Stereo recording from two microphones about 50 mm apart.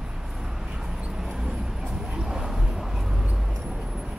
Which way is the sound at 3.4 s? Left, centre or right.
Centre.